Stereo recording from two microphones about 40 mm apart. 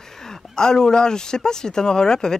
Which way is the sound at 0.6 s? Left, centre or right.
Centre.